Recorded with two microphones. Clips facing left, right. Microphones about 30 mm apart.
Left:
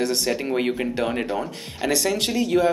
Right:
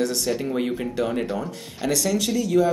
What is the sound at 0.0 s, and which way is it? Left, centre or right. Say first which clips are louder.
Speech: left 1 dB; left.